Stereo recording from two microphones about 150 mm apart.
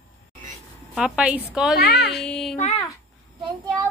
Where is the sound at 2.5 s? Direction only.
50° left (ahead or behind).